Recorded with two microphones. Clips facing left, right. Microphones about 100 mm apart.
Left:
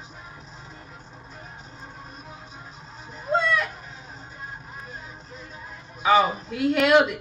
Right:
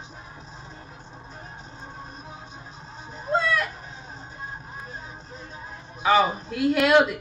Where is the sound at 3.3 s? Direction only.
Centre (ahead or behind).